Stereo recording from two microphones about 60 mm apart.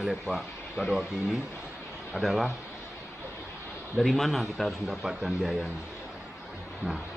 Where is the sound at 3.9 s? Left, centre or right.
Centre.